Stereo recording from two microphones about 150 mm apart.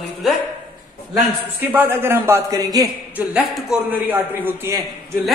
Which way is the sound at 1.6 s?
15° right (ahead or behind).